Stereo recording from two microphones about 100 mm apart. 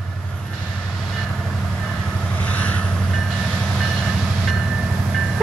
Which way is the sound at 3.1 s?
Centre (ahead or behind).